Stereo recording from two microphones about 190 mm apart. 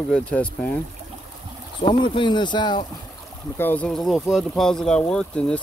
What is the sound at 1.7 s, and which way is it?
Speech, 25° left (ahead or behind).